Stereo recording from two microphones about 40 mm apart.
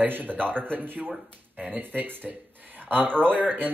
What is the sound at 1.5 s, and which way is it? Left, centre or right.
Speech, right.